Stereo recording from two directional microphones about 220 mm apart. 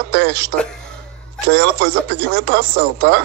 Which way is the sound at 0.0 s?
50° right (ahead or behind).